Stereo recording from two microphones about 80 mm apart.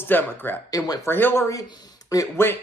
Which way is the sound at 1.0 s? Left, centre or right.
Left.